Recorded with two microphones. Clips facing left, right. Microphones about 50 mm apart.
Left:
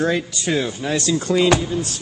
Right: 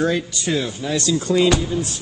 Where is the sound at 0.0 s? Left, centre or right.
Left.